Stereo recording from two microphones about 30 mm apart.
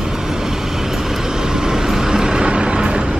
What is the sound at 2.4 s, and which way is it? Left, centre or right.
Vehicle, right.